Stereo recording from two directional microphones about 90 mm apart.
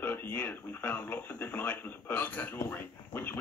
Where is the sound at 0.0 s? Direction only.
25° left (ahead or behind).